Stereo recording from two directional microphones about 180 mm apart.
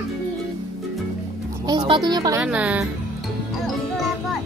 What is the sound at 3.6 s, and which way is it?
Music, centre (ahead or behind).